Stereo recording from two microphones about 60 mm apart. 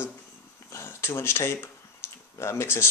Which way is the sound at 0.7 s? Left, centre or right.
Left.